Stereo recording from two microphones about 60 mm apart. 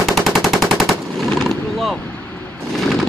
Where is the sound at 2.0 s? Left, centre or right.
Left.